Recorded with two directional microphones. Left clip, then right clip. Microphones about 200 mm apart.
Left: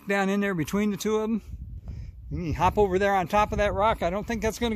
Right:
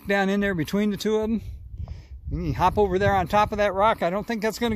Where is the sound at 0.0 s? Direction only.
15° right (ahead or behind).